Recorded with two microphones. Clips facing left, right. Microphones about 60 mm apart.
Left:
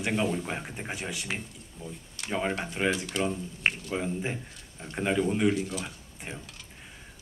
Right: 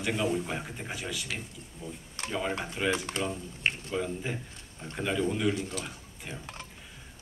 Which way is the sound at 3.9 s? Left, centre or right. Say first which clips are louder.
Left 1 dB; left.